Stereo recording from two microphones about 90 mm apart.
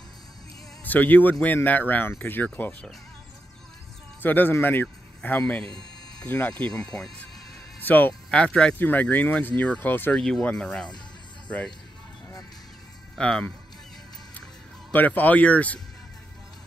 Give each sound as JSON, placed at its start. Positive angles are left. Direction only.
{"t": 0.8, "sound": "a man's voice", "side_deg": 20}
{"t": 4.2, "sound": "speech", "side_deg": 20}
{"t": 6.6, "sound": "speech", "side_deg": 10}
{"t": 7.8, "sound": "speech", "side_deg": 20}
{"t": 10.1, "sound": "speech", "side_deg": 10}
{"t": 13.2, "sound": "speech", "side_deg": 10}
{"t": 14.9, "sound": "speech", "side_deg": 20}